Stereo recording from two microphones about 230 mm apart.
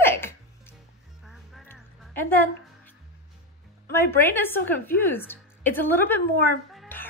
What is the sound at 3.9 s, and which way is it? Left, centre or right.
A woman's voice, centre.